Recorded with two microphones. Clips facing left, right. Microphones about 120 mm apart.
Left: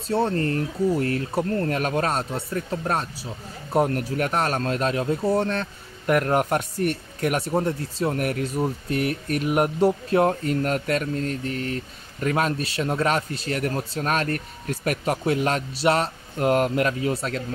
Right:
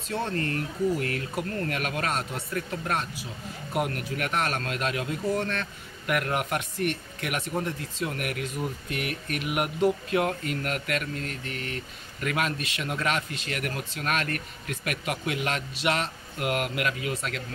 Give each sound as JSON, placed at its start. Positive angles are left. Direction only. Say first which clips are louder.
{"t": 0.1, "sound": "speech", "louder": "left 7 dB", "side_deg": 30}